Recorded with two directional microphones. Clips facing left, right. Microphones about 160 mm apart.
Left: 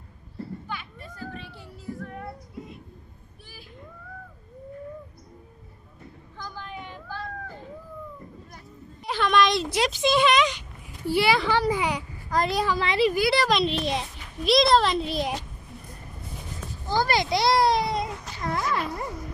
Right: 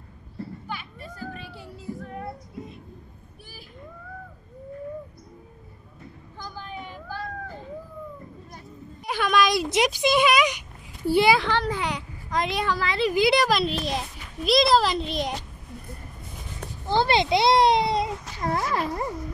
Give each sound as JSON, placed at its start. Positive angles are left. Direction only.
{"t": 0.7, "sound": "children playing", "side_deg": -10}
{"t": 6.3, "sound": "cat", "side_deg": -10}
{"t": 9.0, "sound": "a sound", "side_deg": -10}
{"t": 9.7, "sound": "speech", "side_deg": -15}
{"t": 11.3, "sound": "a child's voice", "side_deg": 5}
{"t": 12.7, "sound": "a woman's voice", "side_deg": 20}
{"t": 13.1, "sound": "speech", "side_deg": -20}
{"t": 13.5, "sound": "a child's voice", "side_deg": 0}
{"t": 16.8, "sound": "a sound", "side_deg": -25}